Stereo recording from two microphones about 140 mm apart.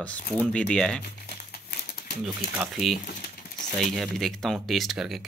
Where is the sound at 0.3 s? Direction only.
5° left (ahead or behind).